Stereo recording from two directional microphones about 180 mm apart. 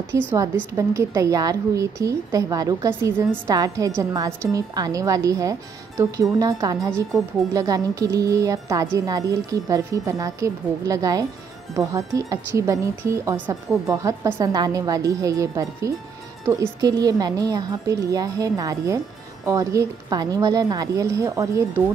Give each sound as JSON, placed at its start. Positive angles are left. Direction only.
{"t": 0.7, "sound": "speech", "side_deg": -15}